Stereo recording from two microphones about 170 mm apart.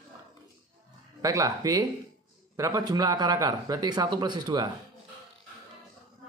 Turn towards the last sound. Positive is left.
turn(degrees=-25)  # may be behind; listen again after turning